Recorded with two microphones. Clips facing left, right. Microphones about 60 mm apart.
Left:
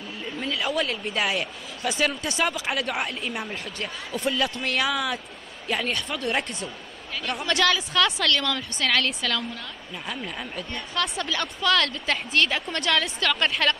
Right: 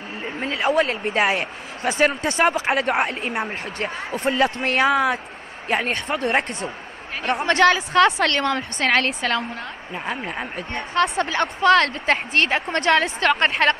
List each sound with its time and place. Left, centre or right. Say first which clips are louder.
0.2 s speech: right 5 dB; right